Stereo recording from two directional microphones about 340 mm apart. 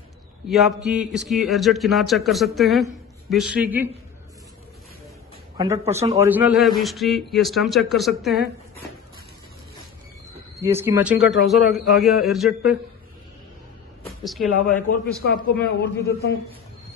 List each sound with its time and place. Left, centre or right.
0.5 s speech: centre
5.6 s speech: centre
10.6 s speech: centre
11.1 s a man's voice: left
11.5 s speech: centre
14.0 s speech: centre
15.6 s a man's voice: left